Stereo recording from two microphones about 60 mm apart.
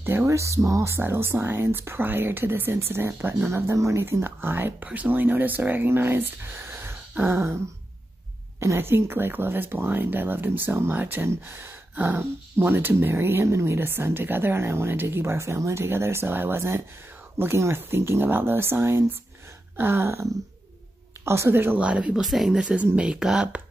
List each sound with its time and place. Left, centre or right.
0.0 s speech: right
0.3 s speech: right
1.0 s speech: right
4.8 s speech: centre
5.1 s speech: right
8.5 s speech: right
11.0 s speech: right
11.2 s a woman's voice: right
21.7 s speech: centre
22.2 s speech: centre